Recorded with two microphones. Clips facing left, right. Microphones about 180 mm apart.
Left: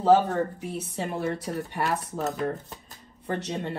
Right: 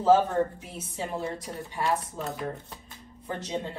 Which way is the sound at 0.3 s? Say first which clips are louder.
Even; 70° left (ahead or behind).